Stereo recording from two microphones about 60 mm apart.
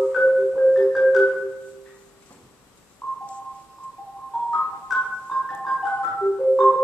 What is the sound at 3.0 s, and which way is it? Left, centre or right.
Telephone dialing, left.